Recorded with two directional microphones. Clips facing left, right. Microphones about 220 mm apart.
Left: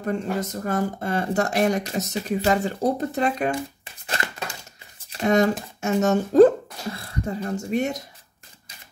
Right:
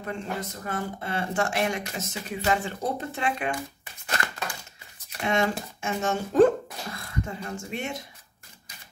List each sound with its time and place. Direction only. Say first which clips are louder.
0.0 s speech: left 7 dB; 45° left (ahead or behind)
5.2 s speech: left 6 dB; 40° left (ahead or behind)